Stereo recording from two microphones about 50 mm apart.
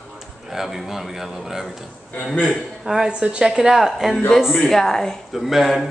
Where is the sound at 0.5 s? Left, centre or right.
Centre.